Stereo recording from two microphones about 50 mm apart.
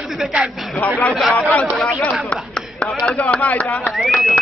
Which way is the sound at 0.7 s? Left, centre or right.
Left.